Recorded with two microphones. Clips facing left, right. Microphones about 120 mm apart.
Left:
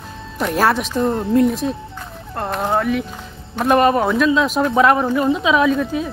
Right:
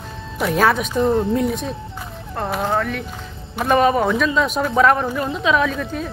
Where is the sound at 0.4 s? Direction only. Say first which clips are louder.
Even; centre (ahead or behind).